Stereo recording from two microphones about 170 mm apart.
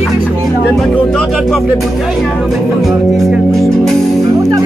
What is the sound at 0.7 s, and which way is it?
Music, centre (ahead or behind).